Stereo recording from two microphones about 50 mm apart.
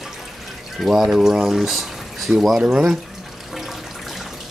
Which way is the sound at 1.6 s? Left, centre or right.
Centre.